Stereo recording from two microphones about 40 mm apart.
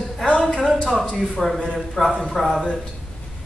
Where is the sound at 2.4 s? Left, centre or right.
Centre.